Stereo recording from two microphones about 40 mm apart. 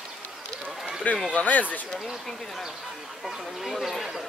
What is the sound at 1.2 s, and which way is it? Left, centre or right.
Speech, left.